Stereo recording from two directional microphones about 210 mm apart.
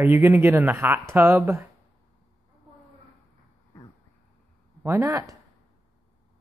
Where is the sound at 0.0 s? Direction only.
10° right (ahead or behind).